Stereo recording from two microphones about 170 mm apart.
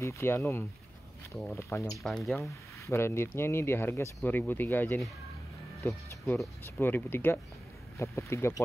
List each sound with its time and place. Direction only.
0.0 s speech: 15° left (ahead or behind)
2.0 s speech: centre (ahead or behind)
2.9 s speech: 15° left (ahead or behind)